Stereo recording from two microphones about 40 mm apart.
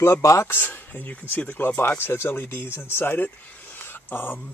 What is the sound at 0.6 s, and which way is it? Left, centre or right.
Speech, left.